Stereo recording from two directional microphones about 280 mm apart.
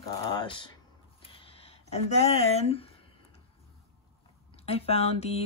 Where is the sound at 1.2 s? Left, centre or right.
Centre.